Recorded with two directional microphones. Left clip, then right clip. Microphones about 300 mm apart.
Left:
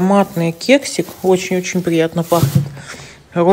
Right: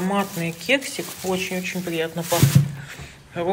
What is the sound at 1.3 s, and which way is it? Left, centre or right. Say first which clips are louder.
Speech: left 10 dB; left.